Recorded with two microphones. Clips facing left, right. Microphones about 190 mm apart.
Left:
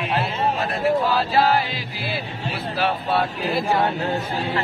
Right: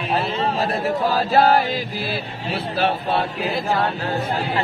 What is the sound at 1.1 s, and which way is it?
Speech, 45° right (ahead or behind).